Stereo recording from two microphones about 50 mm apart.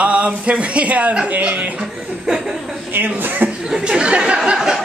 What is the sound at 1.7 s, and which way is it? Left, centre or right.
Speech, centre.